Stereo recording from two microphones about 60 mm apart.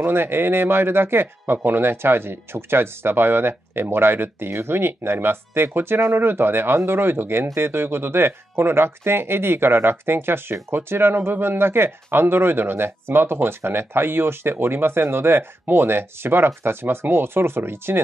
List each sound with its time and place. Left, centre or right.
0.0 s speech: right